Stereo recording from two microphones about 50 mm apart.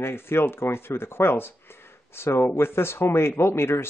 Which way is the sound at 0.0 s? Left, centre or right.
Left.